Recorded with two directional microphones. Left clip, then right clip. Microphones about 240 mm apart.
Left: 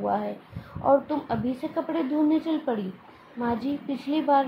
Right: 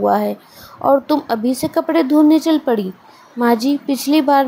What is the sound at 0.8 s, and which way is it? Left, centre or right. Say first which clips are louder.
A woman's voice: right 8 dB; right.